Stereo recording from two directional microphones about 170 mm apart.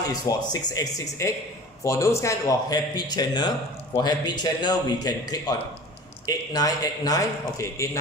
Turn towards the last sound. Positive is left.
turn(degrees=15)  # may be behind; listen again after turning